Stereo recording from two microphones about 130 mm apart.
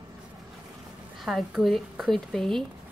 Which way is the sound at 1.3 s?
Centre (ahead or behind).